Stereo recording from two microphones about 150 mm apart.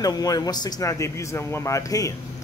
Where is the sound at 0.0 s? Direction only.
25° left (ahead or behind).